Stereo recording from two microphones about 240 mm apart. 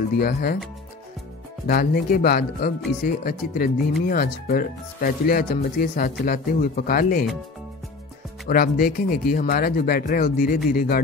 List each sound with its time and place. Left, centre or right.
0.2 s speech: left
1.7 s speech: left
8.5 s speech: left